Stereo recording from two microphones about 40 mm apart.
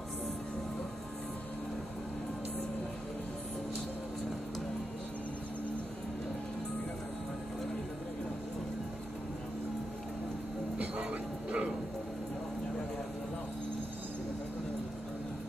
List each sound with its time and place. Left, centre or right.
10.8 s bow-wow: right